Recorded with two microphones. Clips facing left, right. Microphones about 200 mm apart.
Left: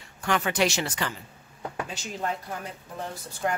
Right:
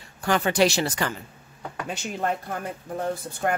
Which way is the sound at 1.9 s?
55° right (ahead or behind).